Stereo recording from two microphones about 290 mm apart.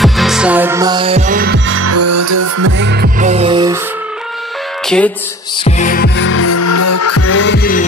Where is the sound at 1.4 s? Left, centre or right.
Right.